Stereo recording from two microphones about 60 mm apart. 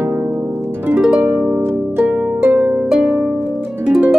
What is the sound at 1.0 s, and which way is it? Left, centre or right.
Harp, centre.